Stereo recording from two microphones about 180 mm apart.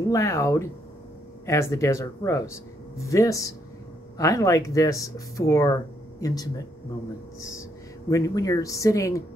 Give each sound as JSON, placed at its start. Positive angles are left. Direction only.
{"t": 0.1, "sound": "speech", "side_deg": 15}